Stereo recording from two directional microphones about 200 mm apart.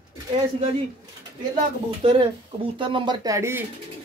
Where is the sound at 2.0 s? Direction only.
25° right (ahead or behind).